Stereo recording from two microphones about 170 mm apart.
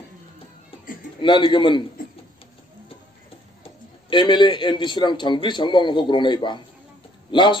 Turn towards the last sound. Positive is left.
turn(degrees=30)  # may be behind; listen again after turning